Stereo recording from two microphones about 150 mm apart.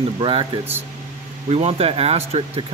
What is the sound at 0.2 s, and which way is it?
Speech, 35° right (ahead or behind).